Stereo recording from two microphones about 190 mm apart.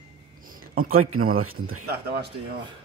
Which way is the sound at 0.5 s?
45° right (ahead or behind).